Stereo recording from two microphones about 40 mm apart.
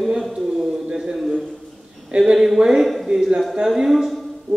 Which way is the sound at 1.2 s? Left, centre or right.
Centre.